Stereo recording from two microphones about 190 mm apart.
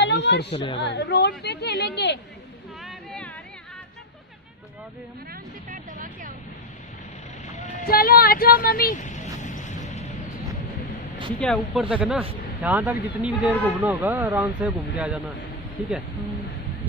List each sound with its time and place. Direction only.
0.0 s a sound: 65° left (ahead or behind)
0.7 s speech: 65° left (ahead or behind)
2.8 s a sound: centre (ahead or behind)
5.7 s vehicle: 45° right (ahead or behind)
7.5 s vehicle: 45° left (ahead or behind)
11.3 s speech: 5° left (ahead or behind)
11.9 s a man's voice: 5° right (ahead or behind)